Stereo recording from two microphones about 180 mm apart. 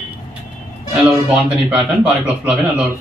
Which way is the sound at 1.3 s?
5° right (ahead or behind).